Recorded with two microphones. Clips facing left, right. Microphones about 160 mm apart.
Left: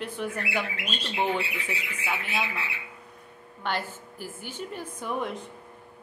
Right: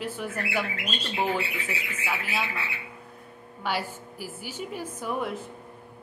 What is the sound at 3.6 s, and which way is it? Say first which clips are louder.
A woman's voice: right 1 dB; 10° right (ahead or behind).